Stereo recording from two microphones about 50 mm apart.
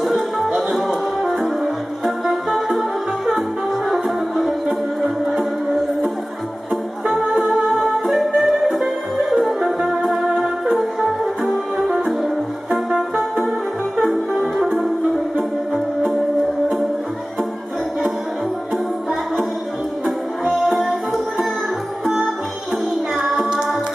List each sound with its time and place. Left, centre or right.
0.5 s music: right
0.7 s music: centre
3.9 s music: centre
7.2 s music: centre
20.1 s music: centre
23.1 s music: centre